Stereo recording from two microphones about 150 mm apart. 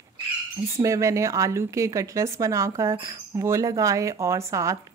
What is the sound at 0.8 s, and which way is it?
Speech, 20° right (ahead or behind).